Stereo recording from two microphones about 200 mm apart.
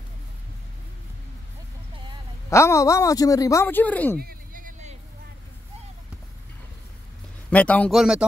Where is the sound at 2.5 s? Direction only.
15° left (ahead or behind).